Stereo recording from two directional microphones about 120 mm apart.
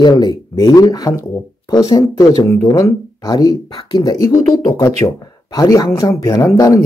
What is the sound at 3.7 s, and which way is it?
Speech, 45° left (ahead or behind).